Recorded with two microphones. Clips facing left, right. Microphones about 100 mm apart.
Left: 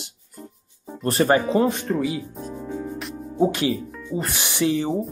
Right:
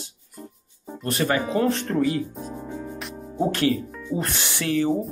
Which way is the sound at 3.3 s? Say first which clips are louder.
Left 1 dB; 10° left (ahead or behind).